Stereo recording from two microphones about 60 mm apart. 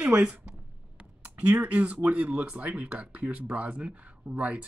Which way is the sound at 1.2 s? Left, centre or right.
Right.